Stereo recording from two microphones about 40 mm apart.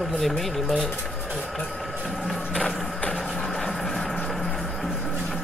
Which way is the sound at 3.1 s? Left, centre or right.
Centre.